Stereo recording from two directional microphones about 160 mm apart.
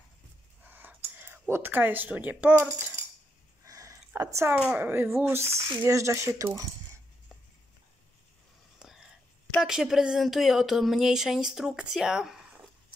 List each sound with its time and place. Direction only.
0.7 s speech: 10° right (ahead or behind)
3.6 s a sound: 20° right (ahead or behind)
4.6 s speech: 5° right (ahead or behind)
8.7 s whispering: 5° right (ahead or behind)
9.6 s speech: 5° right (ahead or behind)